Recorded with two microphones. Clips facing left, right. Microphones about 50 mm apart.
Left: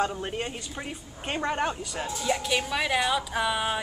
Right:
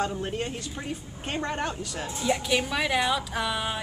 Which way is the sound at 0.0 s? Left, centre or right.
Centre.